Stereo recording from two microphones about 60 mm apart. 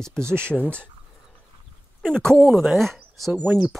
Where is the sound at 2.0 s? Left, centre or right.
Centre.